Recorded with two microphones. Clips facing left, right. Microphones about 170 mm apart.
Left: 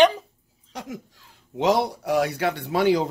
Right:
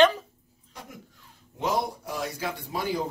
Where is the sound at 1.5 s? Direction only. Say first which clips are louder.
Left 7 dB; 75° left (ahead or behind).